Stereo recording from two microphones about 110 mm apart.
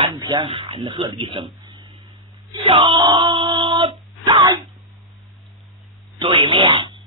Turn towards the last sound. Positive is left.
turn(degrees=-45)  # may be behind; listen again after turning